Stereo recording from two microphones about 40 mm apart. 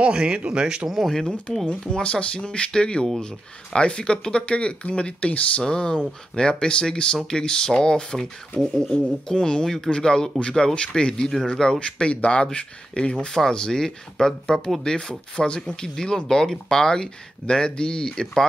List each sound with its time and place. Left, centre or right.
0.0 s speech: right
0.8 s speech: centre
2.0 s speech: left
4.5 s speech: left